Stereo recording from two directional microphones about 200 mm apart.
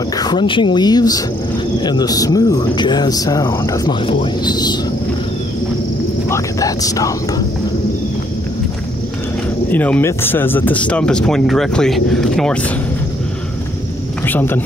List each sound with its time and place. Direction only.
0.2 s speech: 20° left (ahead or behind)
6.3 s vehicle: 15° left (ahead or behind)
9.7 s speech: 10° left (ahead or behind)
14.2 s speech: 10° left (ahead or behind)